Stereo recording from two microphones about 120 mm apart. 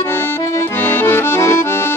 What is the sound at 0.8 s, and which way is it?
Accordion, 15° left (ahead or behind).